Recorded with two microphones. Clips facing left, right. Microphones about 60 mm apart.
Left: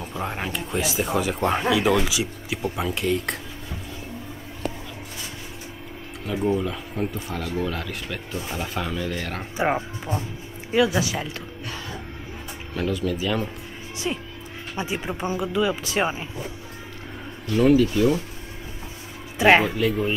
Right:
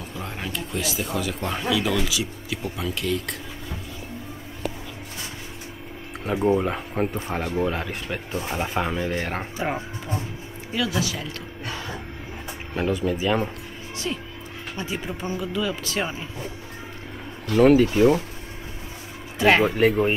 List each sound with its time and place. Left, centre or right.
0.1 s speech: left
6.3 s speech: right
9.6 s speech: left
12.7 s speech: right
14.0 s speech: centre
17.5 s speech: right
19.3 s music: centre
19.6 s speech: right